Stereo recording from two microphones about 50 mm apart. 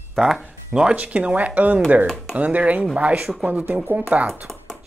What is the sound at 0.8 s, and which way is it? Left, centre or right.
Speech, right.